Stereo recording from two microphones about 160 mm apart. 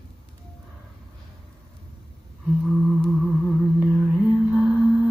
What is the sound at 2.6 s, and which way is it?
Music, centre (ahead or behind).